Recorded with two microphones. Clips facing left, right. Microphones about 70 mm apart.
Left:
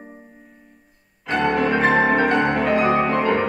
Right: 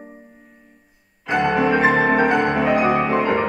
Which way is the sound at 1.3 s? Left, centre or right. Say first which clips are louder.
Right 2 dB; centre.